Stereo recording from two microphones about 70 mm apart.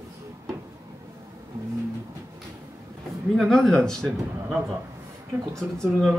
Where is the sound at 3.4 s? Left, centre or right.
Centre.